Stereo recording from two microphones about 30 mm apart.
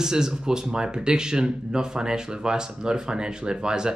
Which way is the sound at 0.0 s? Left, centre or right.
Right.